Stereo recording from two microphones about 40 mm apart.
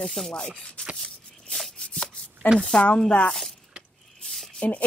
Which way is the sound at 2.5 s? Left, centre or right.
Left.